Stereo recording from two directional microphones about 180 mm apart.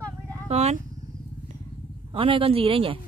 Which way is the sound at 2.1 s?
30° right (ahead or behind).